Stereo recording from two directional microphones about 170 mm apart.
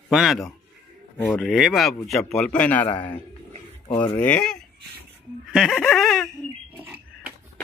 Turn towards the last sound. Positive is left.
turn(degrees=-10)  # may be behind; listen again after turning